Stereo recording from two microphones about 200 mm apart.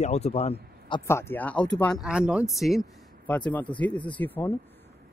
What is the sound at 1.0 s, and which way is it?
Speech, 10° left (ahead or behind).